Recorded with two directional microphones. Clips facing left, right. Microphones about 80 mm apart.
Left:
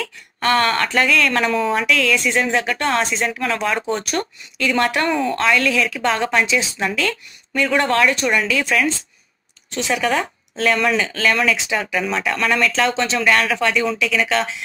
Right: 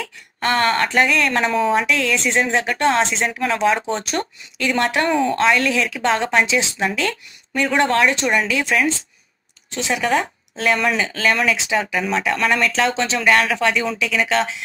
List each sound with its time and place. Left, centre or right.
0.0 s speech: right
1.5 s speech: centre
1.8 s speech: right